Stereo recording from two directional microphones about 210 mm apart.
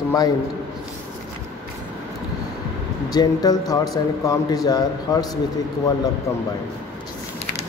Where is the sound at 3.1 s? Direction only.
20° left (ahead or behind).